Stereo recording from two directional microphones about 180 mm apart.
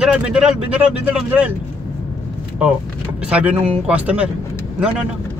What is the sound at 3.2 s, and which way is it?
Speech, 5° right (ahead or behind).